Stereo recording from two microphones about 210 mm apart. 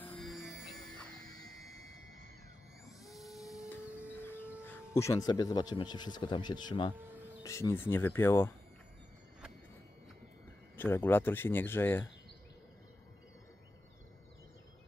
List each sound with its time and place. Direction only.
0.1 s music: centre (ahead or behind)
3.1 s printer: centre (ahead or behind)
4.1 s a sound: 10° left (ahead or behind)
4.6 s speech: 15° left (ahead or behind)
10.8 s speech: 10° left (ahead or behind)